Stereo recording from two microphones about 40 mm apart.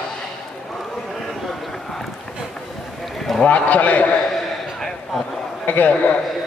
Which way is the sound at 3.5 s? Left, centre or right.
Left.